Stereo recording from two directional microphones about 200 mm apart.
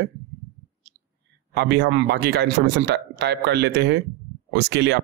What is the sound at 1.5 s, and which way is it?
A man's voice, 60° right (ahead or behind).